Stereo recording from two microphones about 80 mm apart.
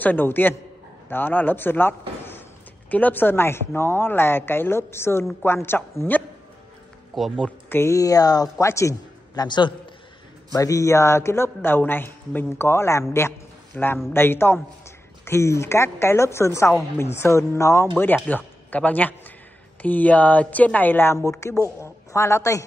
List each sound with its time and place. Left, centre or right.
0.0 s a woman's voice: left
7.1 s speech: centre
7.7 s speech: left
8.6 s a man's voice: left
9.3 s a man's voice: left
10.5 s a man's voice: left
13.7 s speech: centre
14.1 s a woman's voice: left
17.9 s a woman's voice: left
21.3 s a man's voice: left
21.6 s a woman's voice: right
22.1 s a man's voice: left